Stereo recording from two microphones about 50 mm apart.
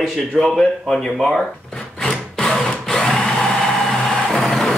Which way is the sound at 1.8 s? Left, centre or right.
Left.